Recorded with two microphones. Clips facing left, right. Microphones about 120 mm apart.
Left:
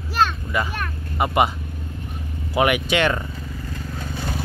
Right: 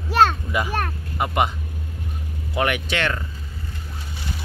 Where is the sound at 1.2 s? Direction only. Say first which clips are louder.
Left 3 dB; 5° left (ahead or behind).